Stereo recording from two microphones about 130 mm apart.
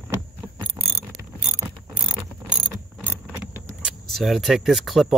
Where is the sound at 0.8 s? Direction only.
25° right (ahead or behind).